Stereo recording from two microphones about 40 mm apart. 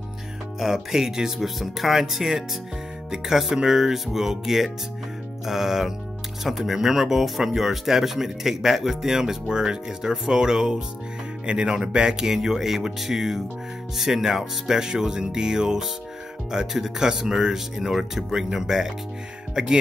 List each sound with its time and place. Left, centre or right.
0.6 s speech: centre